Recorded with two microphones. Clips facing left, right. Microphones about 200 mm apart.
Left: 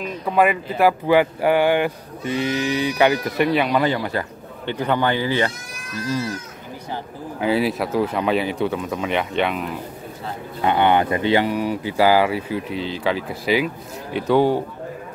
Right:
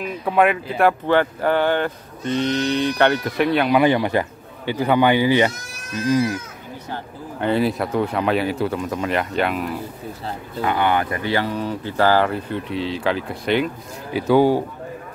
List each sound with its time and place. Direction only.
0.0 s speech: 5° right (ahead or behind)
3.8 s a man's voice: 20° right (ahead or behind)
4.6 s a man's voice: 10° right (ahead or behind)
6.9 s speech: 5° left (ahead or behind)
10.6 s speech: 25° left (ahead or behind); by 14.6 s centre (ahead or behind)